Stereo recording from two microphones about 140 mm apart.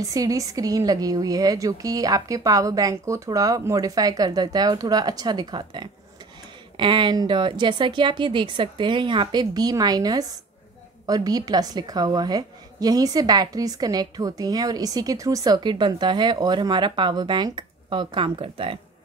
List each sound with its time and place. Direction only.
0.0 s a woman's voice: 25° right (ahead or behind)